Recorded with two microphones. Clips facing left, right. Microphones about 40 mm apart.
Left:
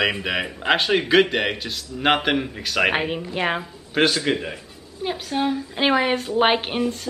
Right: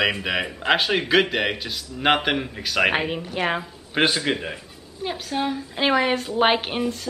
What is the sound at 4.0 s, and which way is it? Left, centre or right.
Speech, centre.